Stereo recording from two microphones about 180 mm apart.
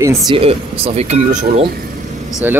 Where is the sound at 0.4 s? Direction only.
30° right (ahead or behind).